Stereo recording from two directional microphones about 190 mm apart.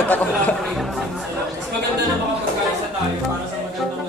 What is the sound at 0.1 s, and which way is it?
Music, 10° left (ahead or behind).